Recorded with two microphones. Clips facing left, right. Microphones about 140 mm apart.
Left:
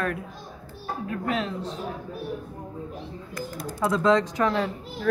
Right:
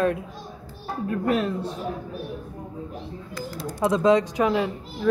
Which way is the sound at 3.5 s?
20° right (ahead or behind).